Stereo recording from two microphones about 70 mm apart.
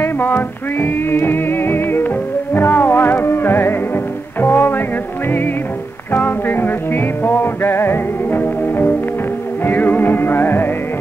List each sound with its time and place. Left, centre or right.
0.0 s music: left
6.1 s music: left